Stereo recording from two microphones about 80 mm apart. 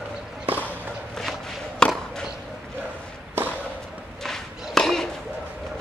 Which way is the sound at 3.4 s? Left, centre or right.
Right.